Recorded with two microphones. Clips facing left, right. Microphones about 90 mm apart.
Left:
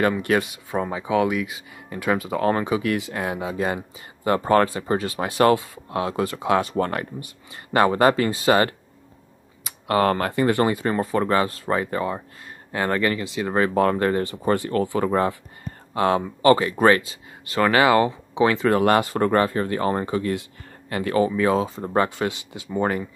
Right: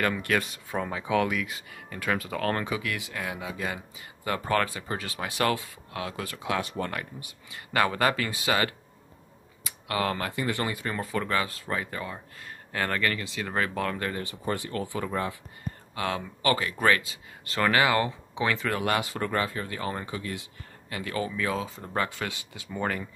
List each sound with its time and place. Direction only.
0.0 s speech: 20° left (ahead or behind)
2.8 s speech: 35° left (ahead or behind)
9.8 s speech: 45° left (ahead or behind)
12.7 s speech: 20° left (ahead or behind)
13.7 s speech: 40° left (ahead or behind)
15.9 s speech: 35° left (ahead or behind)
17.5 s speech: 20° left (ahead or behind)
18.7 s speech: 45° left (ahead or behind); by 23.0 s 20° left (ahead or behind)